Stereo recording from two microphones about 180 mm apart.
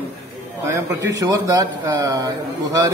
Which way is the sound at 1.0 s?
20° right (ahead or behind).